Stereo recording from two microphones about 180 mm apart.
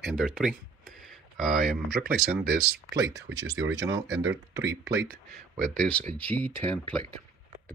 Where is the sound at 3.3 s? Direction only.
90° right.